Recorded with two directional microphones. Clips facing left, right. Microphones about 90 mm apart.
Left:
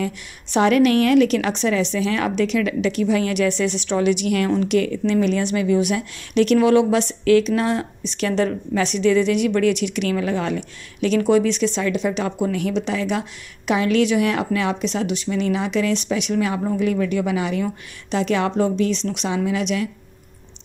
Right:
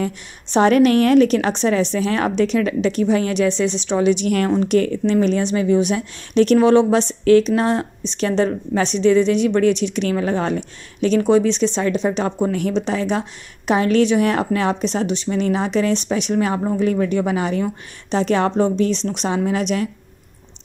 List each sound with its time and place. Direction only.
0.0 s a woman's voice: 35° right (ahead or behind)
4.3 s a woman's voice: 40° right (ahead or behind)